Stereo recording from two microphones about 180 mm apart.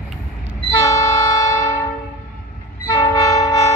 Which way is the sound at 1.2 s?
15° left (ahead or behind).